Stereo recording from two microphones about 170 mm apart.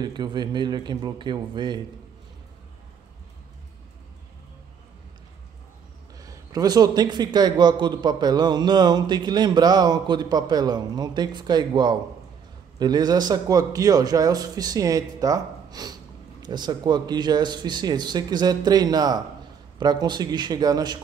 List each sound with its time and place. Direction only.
0.0 s a man's voice: 25° right (ahead or behind)
6.1 s a man's voice: 20° right (ahead or behind)